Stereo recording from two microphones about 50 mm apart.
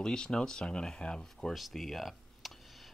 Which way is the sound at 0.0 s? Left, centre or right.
Centre.